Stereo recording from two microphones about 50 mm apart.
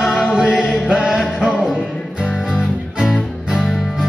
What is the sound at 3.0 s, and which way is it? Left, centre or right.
Music, centre.